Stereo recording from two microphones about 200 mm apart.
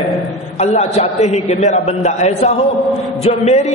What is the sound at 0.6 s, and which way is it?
A man's voice, 35° left (ahead or behind).